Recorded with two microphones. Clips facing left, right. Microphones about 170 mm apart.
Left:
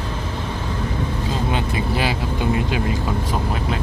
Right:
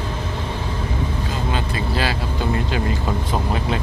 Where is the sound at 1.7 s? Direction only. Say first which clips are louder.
Left 1 dB; 15° left (ahead or behind).